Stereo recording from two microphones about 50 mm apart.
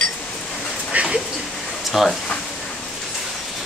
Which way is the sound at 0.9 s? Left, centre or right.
Right.